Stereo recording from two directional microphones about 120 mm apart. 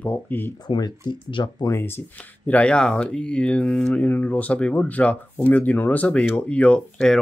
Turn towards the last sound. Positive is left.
turn(degrees=10)  # may be behind; listen again after turning